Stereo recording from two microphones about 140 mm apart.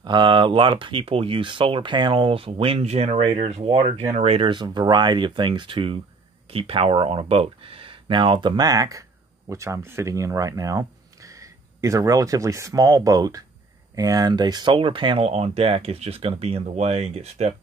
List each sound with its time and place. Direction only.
0.0 s speech: 35° right (ahead or behind); by 4.5 s 50° right (ahead or behind)
4.5 s speech: 30° right (ahead or behind); by 17.6 s 50° right (ahead or behind)